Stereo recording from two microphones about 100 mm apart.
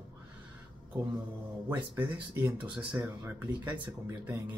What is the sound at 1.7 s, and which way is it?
Speech, 20° right (ahead or behind).